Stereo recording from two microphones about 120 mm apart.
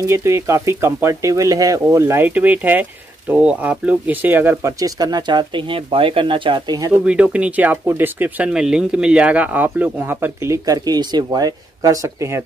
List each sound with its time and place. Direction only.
0.0 s speech: 20° right (ahead or behind)
4.7 s speech: 30° right (ahead or behind)
7.1 s speech: 10° right (ahead or behind)